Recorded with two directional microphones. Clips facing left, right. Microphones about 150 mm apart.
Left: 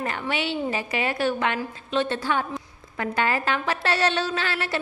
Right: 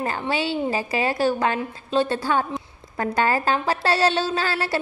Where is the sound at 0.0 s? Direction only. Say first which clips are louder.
Right 3 dB; 35° right (ahead or behind).